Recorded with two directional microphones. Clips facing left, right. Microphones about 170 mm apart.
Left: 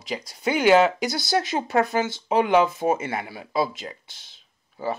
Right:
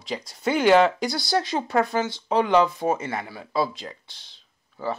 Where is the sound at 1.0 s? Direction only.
20° left (ahead or behind).